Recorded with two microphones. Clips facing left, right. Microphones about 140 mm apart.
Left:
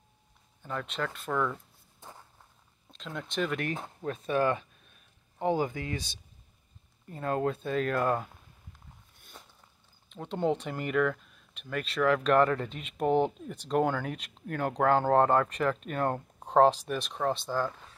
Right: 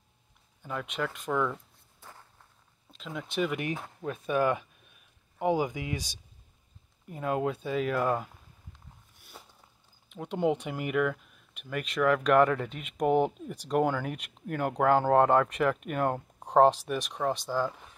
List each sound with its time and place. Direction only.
0.6 s speech: 10° right (ahead or behind)
2.9 s speech: 5° right (ahead or behind)
9.3 s biting: 10° right (ahead or behind)
10.0 s speech: 10° right (ahead or behind)